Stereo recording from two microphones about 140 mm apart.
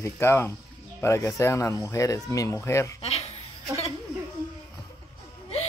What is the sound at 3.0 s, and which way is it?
Speech, 45° left (ahead or behind).